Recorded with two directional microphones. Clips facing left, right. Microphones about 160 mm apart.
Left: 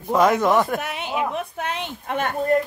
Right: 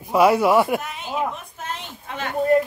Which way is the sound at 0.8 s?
70° left (ahead or behind).